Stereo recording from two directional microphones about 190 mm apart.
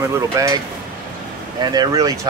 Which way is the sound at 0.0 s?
15° right (ahead or behind).